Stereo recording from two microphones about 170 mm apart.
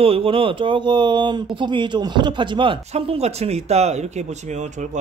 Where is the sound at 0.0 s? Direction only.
35° right (ahead or behind).